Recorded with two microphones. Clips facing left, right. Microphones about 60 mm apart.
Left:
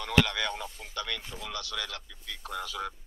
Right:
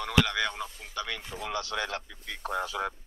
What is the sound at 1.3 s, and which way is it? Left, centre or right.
Speech, right.